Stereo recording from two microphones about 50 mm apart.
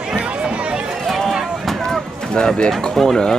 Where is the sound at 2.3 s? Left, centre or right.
Centre.